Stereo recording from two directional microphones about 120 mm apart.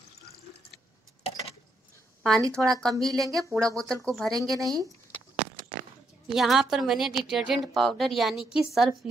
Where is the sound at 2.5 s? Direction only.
5° left (ahead or behind).